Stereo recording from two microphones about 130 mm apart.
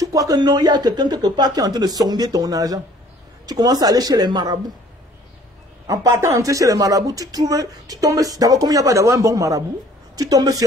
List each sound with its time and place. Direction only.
0.0 s speech: 25° right (ahead or behind)
5.9 s speech: 25° right (ahead or behind)